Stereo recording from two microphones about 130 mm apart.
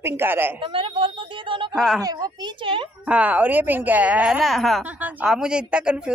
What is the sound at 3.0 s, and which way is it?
Speech, 10° right (ahead or behind).